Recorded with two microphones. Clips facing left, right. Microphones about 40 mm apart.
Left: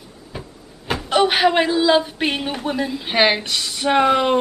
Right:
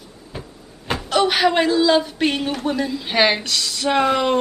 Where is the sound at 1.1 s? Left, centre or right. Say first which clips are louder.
Left 1 dB; centre.